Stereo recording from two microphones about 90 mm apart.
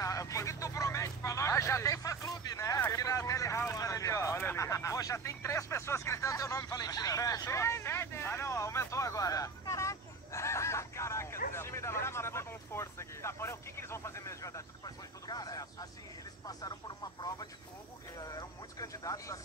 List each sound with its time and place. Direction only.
0.0 s vehicle: 40° left (ahead or behind)
15.2 s vehicle: 45° left (ahead or behind)
16.4 s a sound: 50° left (ahead or behind)